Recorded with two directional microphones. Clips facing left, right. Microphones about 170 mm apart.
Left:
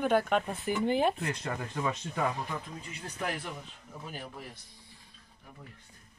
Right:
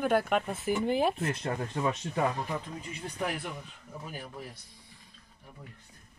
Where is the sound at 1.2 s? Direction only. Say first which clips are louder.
Right 3 dB; 25° right (ahead or behind).